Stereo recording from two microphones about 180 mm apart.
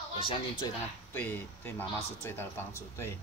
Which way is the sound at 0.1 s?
30° left (ahead or behind).